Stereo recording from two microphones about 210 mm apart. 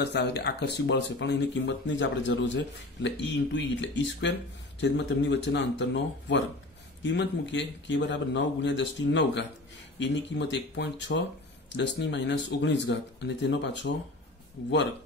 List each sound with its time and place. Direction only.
0.0 s speech: 55° left (ahead or behind)